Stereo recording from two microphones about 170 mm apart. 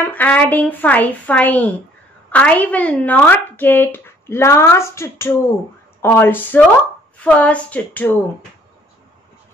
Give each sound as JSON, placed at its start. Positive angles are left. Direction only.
{"t": 0.0, "sound": "speech", "side_deg": 10}